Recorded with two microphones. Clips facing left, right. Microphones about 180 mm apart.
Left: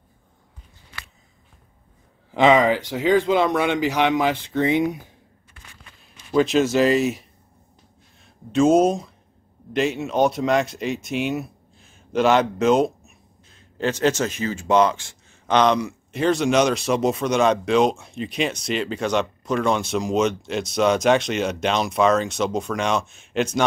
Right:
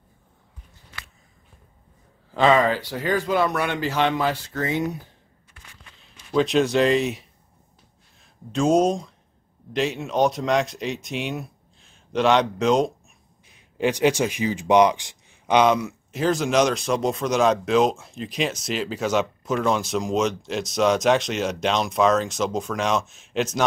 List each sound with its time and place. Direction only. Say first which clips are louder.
2.3 s speech: left 2 dB; 15° left (ahead or behind)
6.3 s speech: left 1 dB; centre (ahead or behind)
13.5 s speech: right 1 dB; 15° right (ahead or behind)